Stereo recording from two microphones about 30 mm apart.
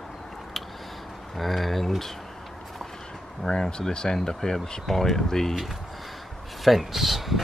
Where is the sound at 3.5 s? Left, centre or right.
Centre.